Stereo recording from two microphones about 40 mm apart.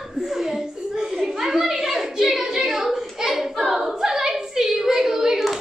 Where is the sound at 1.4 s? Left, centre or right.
Centre.